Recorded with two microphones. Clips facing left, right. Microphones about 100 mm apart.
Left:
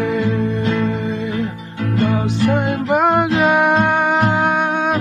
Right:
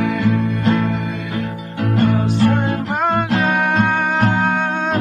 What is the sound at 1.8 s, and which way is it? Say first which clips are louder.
Music: right 1 dB; 60° right (ahead or behind).